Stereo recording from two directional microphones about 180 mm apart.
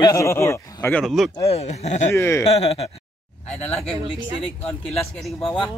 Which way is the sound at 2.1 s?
15° left (ahead or behind).